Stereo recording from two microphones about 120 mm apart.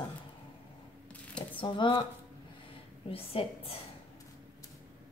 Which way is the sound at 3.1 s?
55° left (ahead or behind).